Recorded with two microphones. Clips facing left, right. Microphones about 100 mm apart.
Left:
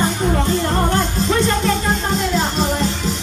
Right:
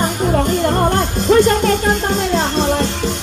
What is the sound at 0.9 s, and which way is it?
Music, 60° right (ahead or behind).